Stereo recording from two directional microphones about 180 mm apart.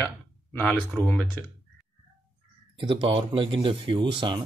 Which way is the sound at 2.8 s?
25° right (ahead or behind).